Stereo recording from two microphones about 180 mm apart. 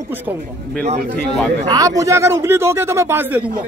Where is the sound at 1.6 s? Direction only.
20° right (ahead or behind).